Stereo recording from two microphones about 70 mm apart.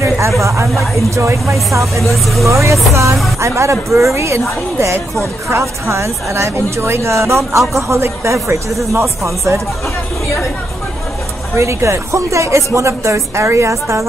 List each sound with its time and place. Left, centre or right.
0.4 s speech: right
2.0 s speech: centre
2.4 s speech: right
11.5 s speech: right